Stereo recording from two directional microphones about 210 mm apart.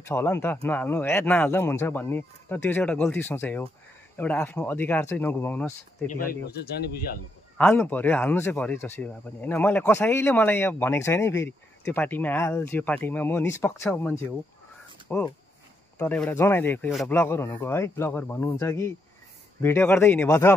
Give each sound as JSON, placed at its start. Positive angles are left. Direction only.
{"t": 0.0, "sound": "speech", "side_deg": 10}
{"t": 6.0, "sound": "speech", "side_deg": 45}
{"t": 7.5, "sound": "speech", "side_deg": 10}